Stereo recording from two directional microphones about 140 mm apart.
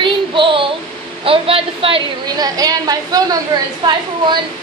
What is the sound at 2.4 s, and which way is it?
A woman's voice, 25° right (ahead or behind).